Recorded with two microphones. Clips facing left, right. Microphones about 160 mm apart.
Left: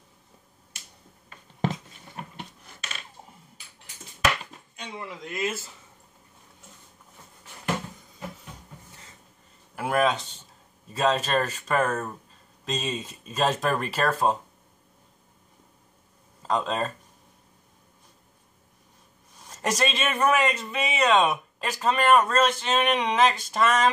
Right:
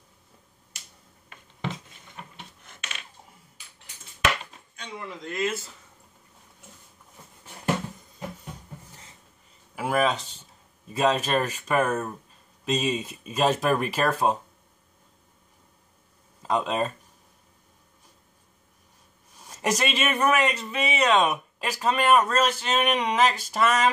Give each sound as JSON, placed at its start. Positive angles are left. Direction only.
{"t": 1.3, "sound": "a sound", "side_deg": 45}
{"t": 4.7, "sound": "speech", "side_deg": 5}
{"t": 9.8, "sound": "speech", "side_deg": -5}
{"t": 16.4, "sound": "speech", "side_deg": -10}
{"t": 19.4, "sound": "speech", "side_deg": -5}